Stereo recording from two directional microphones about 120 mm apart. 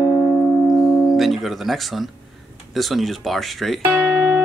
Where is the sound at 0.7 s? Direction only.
Centre (ahead or behind).